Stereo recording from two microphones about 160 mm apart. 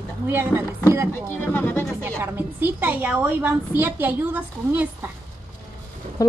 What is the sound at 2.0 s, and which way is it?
A woman's voice, 15° right (ahead or behind).